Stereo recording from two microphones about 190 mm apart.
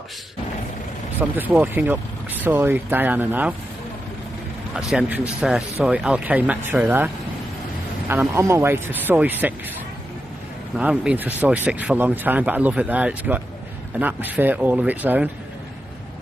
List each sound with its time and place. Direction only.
1.3 s speech: 10° right (ahead or behind)
4.7 s speech: 5° right (ahead or behind)
8.1 s speech: 15° right (ahead or behind)
10.8 s speech: 5° right (ahead or behind)